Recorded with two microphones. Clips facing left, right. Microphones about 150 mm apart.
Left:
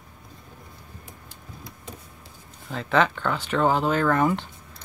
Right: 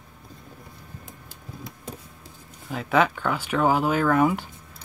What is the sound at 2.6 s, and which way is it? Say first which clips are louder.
Speech: right 1 dB; 10° right (ahead or behind).